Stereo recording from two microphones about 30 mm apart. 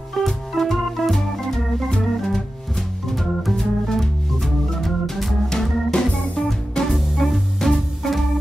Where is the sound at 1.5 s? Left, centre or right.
Centre.